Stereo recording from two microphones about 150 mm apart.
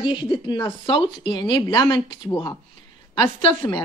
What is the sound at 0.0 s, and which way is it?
A woman's voice, 30° left (ahead or behind).